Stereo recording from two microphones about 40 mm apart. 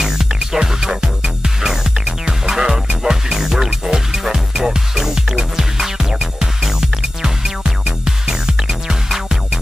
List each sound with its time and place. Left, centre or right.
0.0 s music: centre